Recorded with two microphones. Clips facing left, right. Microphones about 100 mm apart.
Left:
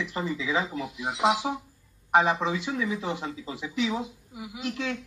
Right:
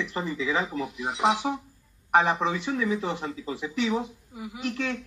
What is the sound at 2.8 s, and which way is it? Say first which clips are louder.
Speech: right 3 dB; 25° right (ahead or behind).